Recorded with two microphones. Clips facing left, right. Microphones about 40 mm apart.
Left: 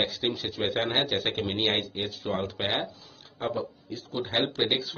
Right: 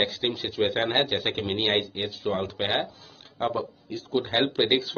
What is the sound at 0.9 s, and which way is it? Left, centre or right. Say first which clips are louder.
Speech: right 2 dB; centre.